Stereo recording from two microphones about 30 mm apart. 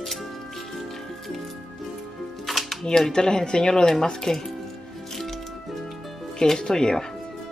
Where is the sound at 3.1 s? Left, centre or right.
Left.